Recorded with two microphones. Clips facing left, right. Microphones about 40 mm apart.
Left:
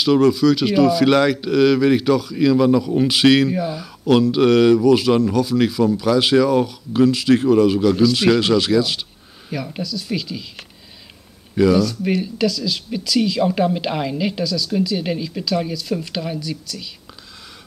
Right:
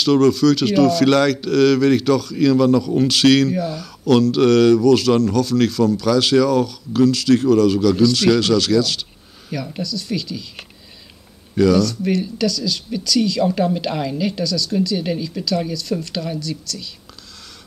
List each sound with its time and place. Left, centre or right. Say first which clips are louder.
0.0 s speech: even; centre
9.5 s speech: even; centre
11.5 s speech: even; centre